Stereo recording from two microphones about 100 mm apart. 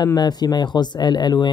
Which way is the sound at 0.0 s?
45° left (ahead or behind).